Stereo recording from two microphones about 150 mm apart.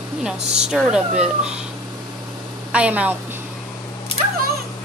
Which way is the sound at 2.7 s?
10° right (ahead or behind).